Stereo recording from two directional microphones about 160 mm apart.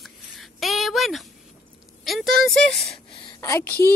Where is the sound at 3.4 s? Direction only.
15° left (ahead or behind).